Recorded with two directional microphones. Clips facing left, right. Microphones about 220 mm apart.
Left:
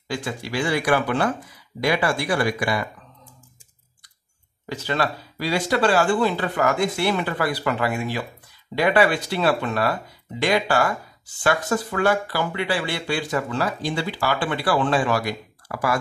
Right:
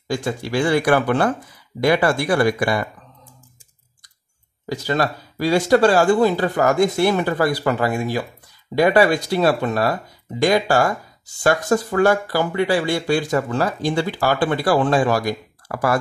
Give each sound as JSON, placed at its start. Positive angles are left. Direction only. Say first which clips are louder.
{"t": 0.1, "sound": "speech", "louder": "right 5 dB", "side_deg": -45}
{"t": 4.6, "sound": "speech", "louder": "right 4 dB", "side_deg": -40}